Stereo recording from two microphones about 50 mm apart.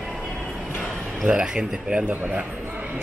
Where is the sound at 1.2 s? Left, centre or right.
Centre.